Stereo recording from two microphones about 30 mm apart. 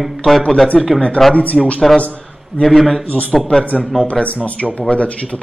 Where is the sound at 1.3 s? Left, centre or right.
Left.